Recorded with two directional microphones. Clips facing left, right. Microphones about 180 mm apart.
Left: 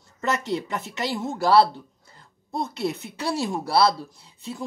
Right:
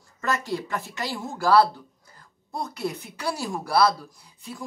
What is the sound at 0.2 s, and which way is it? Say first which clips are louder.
Speech: left 2 dB; 20° left (ahead or behind).